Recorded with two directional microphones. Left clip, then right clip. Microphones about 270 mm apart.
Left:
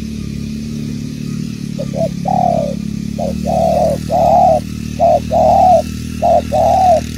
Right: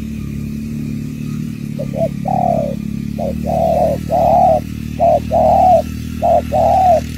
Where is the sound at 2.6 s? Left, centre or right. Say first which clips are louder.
Left 1 dB; left.